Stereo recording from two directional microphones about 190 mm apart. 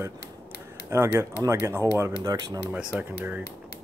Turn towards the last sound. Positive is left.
turn(degrees=-10)  # may be behind; listen again after turning